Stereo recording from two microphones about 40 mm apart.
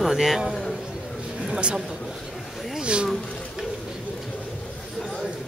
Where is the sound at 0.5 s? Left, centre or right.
Centre.